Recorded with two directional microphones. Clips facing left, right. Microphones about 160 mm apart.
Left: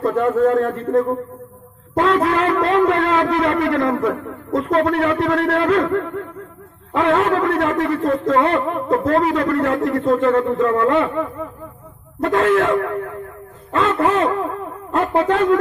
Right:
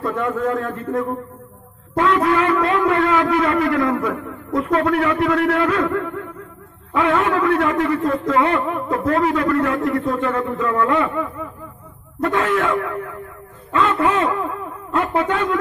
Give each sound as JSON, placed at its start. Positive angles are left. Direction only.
{"t": 0.2, "sound": "a man's voice", "side_deg": 30}
{"t": 12.3, "sound": "a man's voice", "side_deg": 35}